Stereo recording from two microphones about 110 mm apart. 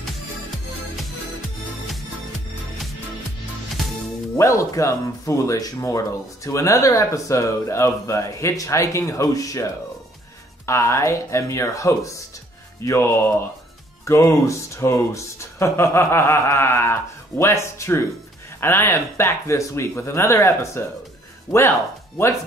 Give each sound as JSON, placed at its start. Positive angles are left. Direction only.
{"t": 4.4, "sound": "speech", "side_deg": 25}